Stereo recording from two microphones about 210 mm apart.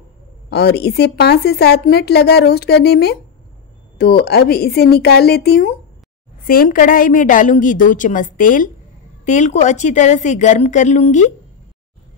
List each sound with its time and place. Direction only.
0.5 s a woman's voice: 50° left (ahead or behind); by 11.2 s 35° left (ahead or behind)